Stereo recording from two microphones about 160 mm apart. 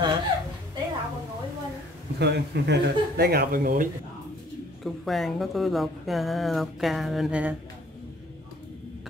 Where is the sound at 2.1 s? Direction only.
90° right; by 3.9 s 60° right (ahead or behind).